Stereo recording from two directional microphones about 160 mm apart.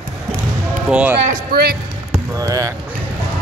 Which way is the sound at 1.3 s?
70° right (ahead or behind).